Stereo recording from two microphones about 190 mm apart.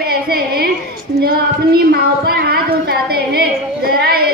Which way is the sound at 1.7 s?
55° right (ahead or behind).